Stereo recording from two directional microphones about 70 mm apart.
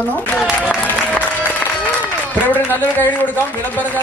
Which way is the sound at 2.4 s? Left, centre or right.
Left.